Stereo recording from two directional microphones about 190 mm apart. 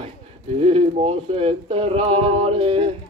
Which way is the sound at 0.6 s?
30° right (ahead or behind).